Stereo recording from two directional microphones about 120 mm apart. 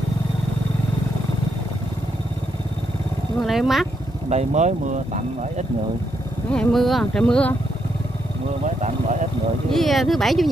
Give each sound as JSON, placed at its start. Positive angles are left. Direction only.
{"t": 3.4, "sound": "speech", "side_deg": 0}
{"t": 4.3, "sound": "speech", "side_deg": -75}
{"t": 6.5, "sound": "speech", "side_deg": 5}
{"t": 8.6, "sound": "a sound", "side_deg": -80}
{"t": 9.7, "sound": "speech", "side_deg": 0}